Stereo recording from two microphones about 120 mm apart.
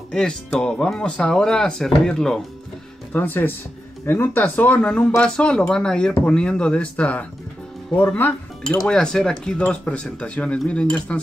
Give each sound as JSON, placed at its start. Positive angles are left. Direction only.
{"t": 0.1, "sound": "speech", "side_deg": 5}
{"t": 3.1, "sound": "speech", "side_deg": 15}